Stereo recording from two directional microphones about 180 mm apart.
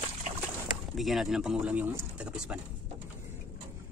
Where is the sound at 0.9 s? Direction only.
Centre (ahead or behind).